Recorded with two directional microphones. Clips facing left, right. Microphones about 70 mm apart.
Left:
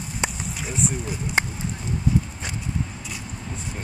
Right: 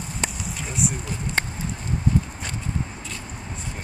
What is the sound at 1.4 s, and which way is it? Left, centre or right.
Speech, centre.